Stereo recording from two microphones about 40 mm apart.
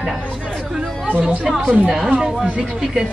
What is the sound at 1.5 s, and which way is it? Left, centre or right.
Speech, centre.